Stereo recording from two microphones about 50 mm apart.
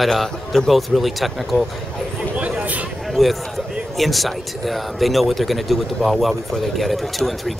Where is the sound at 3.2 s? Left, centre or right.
Centre.